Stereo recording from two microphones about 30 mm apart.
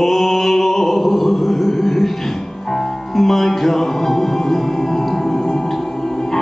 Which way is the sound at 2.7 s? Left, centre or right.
Centre.